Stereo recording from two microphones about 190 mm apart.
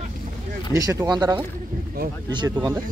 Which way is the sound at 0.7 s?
20° right (ahead or behind).